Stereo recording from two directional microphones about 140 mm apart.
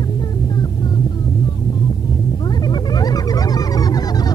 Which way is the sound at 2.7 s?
30° left (ahead or behind).